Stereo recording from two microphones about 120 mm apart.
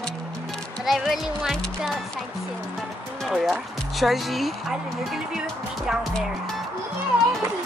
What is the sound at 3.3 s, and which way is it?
A child's voice, centre (ahead or behind).